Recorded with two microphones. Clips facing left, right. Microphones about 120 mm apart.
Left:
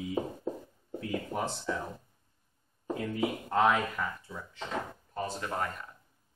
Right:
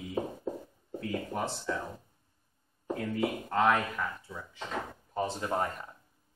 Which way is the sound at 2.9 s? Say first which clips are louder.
Even; 5° left (ahead or behind).